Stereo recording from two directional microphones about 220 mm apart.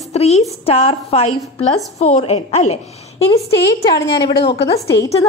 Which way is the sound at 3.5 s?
50° left (ahead or behind).